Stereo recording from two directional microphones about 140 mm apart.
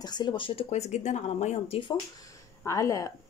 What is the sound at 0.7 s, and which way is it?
Speech, 55° left (ahead or behind).